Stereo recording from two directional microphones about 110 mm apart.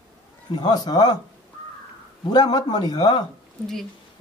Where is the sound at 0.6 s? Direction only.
40° left (ahead or behind).